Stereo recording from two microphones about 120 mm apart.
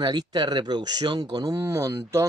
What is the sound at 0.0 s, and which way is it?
Speech, 35° right (ahead or behind).